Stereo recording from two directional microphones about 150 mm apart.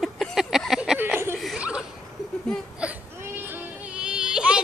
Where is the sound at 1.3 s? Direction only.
Centre (ahead or behind).